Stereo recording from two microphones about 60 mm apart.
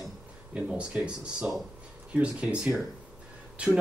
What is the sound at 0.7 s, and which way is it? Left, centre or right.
Speech, centre.